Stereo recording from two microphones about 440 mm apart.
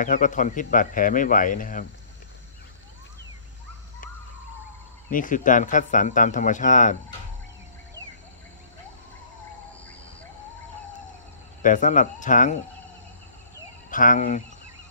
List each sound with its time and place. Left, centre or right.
0.0 s speech: centre
5.1 s speech: centre
11.6 s speech: centre
13.8 s speech: centre